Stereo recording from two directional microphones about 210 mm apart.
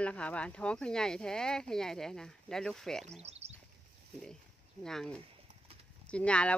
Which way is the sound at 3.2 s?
30° right (ahead or behind).